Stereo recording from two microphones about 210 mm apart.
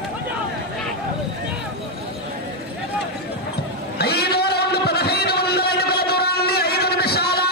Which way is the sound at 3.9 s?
50° left (ahead or behind).